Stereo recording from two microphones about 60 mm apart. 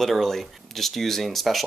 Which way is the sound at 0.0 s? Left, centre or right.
Centre.